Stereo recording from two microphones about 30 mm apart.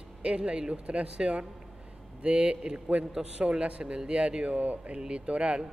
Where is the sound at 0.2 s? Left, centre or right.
Right.